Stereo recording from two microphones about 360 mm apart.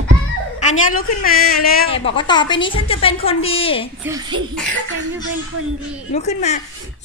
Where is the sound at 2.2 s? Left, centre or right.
Centre.